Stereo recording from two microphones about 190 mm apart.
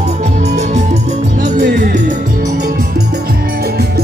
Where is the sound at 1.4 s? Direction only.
45° right (ahead or behind).